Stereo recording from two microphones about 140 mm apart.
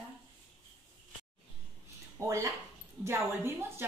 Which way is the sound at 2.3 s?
20° right (ahead or behind).